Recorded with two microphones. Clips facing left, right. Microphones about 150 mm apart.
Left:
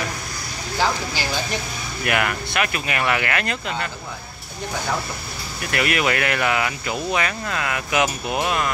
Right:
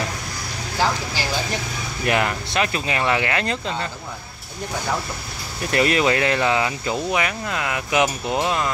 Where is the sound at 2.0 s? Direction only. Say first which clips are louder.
Right 2 dB; 30° right (ahead or behind).